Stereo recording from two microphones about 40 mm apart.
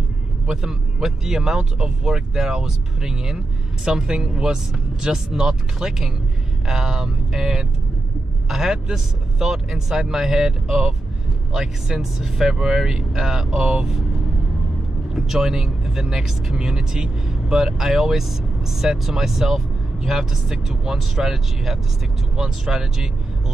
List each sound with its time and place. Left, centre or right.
0.5 s speech: centre
15.1 s speech: centre